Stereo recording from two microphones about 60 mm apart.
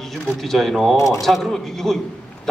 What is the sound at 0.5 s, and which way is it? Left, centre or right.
Speech, centre.